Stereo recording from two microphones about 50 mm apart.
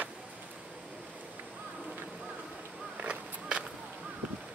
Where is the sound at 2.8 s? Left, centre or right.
Centre.